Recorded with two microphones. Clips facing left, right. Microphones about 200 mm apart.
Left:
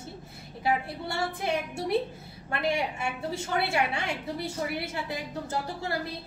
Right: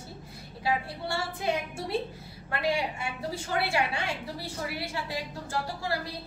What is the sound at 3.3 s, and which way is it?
A woman's voice, 25° left (ahead or behind).